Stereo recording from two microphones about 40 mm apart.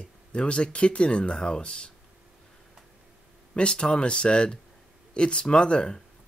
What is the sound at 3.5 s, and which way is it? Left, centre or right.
Speech, left.